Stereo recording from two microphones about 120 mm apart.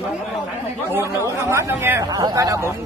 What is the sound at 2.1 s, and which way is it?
Speech, 35° right (ahead or behind).